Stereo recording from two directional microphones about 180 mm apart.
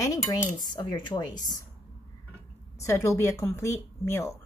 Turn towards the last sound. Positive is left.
turn(degrees=15)  # may be behind; listen again after turning